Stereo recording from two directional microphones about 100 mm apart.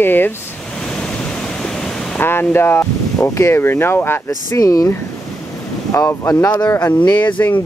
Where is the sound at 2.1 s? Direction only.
20° left (ahead or behind).